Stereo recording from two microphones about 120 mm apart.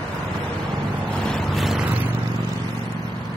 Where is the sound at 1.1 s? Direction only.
5° left (ahead or behind).